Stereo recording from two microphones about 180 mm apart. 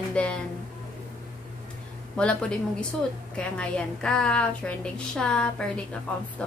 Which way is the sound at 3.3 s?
5° left (ahead or behind).